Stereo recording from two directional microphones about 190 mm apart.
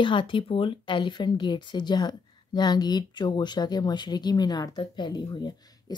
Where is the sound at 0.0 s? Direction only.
25° left (ahead or behind).